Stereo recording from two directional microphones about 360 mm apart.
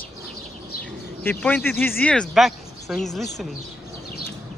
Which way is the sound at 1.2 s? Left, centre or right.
Centre.